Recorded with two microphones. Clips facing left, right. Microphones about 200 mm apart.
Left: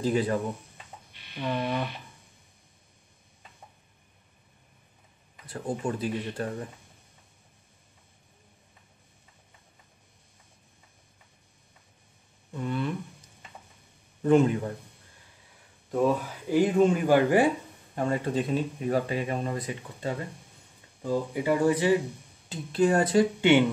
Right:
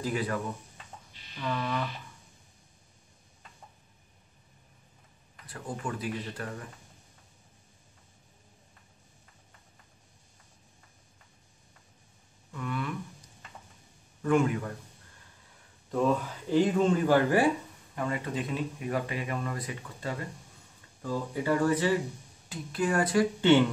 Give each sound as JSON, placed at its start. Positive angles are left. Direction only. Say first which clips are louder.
{"t": 0.0, "sound": "speech", "louder": "left 5 dB", "side_deg": 25}
{"t": 1.1, "sound": "a sound", "louder": "left 5 dB", "side_deg": 60}
{"t": 1.4, "sound": "speech", "louder": "left 3 dB", "side_deg": 25}
{"t": 5.5, "sound": "speech", "louder": "left 6 dB", "side_deg": 25}
{"t": 12.5, "sound": "speech", "louder": "left 4 dB", "side_deg": 30}
{"t": 14.2, "sound": "speech", "louder": "left 4 dB", "side_deg": 25}
{"t": 15.9, "sound": "speech", "louder": "left 2 dB", "side_deg": 10}
{"t": 17.9, "sound": "speech", "louder": "left 5 dB", "side_deg": 35}
{"t": 22.5, "sound": "speech", "louder": "left 6 dB", "side_deg": 25}